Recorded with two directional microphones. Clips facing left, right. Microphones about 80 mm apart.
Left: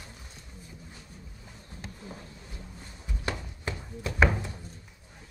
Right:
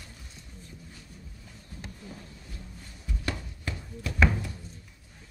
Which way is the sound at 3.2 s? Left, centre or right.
Left.